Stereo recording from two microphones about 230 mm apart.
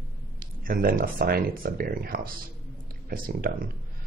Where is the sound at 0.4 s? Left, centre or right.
Right.